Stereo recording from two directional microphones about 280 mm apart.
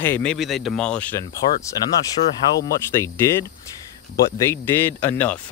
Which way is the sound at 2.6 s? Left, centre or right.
Centre.